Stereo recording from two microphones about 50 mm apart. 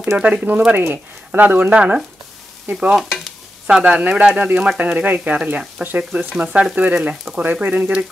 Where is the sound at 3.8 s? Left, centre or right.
Right.